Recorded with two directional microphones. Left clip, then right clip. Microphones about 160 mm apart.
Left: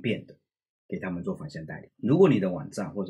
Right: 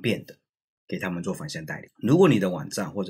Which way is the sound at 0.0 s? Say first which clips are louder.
Right 3 dB; 30° right (ahead or behind).